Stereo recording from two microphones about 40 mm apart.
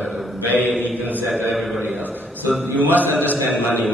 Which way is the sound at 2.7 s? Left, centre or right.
Right.